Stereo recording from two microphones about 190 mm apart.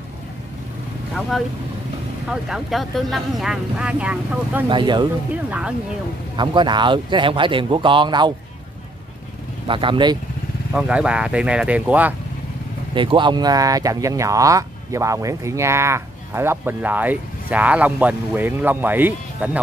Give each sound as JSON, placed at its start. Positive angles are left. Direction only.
{"t": 2.2, "sound": "speech", "side_deg": -5}
{"t": 4.6, "sound": "speech", "side_deg": -25}
{"t": 5.3, "sound": "speech", "side_deg": -5}
{"t": 6.3, "sound": "speech", "side_deg": -25}
{"t": 9.7, "sound": "speech", "side_deg": -25}
{"t": 10.7, "sound": "speech", "side_deg": -5}
{"t": 12.9, "sound": "speech", "side_deg": -25}